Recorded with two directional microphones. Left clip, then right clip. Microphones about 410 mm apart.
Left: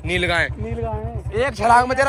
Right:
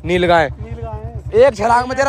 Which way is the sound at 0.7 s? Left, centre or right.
Centre.